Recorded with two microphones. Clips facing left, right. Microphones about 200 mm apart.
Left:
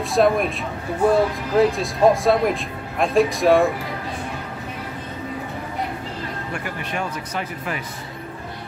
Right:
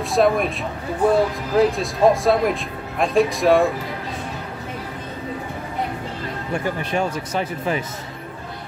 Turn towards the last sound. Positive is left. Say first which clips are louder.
# right 5 dB
turn(degrees=-25)  # may be behind; listen again after turning